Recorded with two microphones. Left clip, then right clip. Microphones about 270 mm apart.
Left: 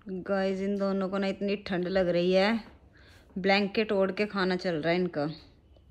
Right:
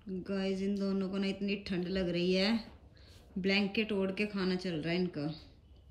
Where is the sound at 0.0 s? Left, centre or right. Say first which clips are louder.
Left 8 dB; left.